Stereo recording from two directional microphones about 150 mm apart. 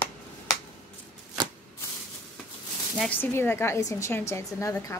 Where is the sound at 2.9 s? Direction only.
10° left (ahead or behind).